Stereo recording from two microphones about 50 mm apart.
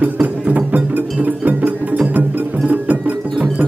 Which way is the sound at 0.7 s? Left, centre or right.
Right.